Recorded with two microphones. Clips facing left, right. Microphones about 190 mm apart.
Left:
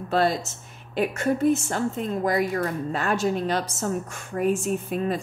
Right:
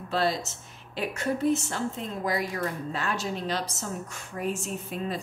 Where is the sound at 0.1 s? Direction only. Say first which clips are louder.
Left 4 dB; 50° left (ahead or behind).